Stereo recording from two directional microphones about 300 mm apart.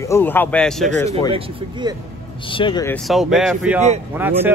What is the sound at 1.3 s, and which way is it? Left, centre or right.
Speech, centre.